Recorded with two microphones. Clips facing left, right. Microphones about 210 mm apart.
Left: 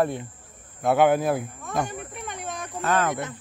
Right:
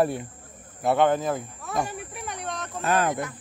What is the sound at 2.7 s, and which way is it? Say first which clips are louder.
Speech: even; 15° right (ahead or behind).